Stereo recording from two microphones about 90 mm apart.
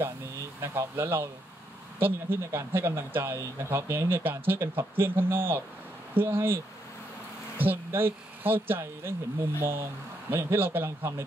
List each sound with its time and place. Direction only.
0.6 s speech: 30° right (ahead or behind)